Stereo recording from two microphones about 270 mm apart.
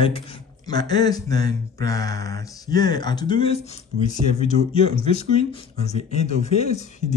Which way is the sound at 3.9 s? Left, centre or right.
Right.